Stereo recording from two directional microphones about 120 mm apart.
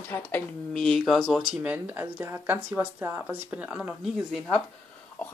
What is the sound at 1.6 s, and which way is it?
Speech, 15° right (ahead or behind).